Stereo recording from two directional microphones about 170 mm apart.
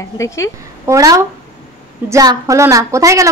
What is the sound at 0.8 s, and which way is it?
A woman's voice, 20° right (ahead or behind).